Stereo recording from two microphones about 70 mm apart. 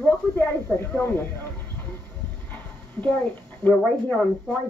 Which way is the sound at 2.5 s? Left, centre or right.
Centre.